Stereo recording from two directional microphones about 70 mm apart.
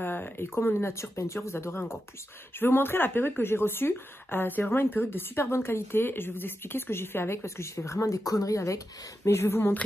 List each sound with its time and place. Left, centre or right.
0.0 s a woman's voice: left